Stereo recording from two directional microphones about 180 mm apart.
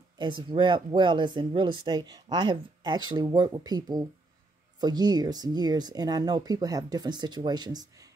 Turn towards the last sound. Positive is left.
turn(degrees=-20)  # may be behind; listen again after turning